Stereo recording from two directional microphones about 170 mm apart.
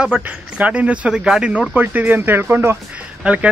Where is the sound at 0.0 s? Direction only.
5° right (ahead or behind).